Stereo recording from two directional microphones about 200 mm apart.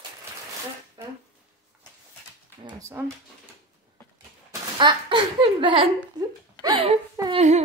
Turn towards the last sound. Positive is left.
turn(degrees=-35)  # may be behind; listen again after turning